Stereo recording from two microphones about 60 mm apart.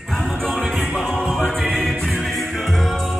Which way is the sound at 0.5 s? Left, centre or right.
Centre.